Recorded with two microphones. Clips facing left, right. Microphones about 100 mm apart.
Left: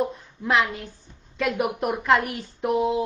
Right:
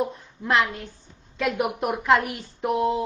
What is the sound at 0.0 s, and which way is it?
A woman's voice, centre (ahead or behind).